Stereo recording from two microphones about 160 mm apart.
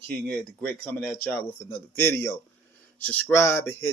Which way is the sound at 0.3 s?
5° left (ahead or behind).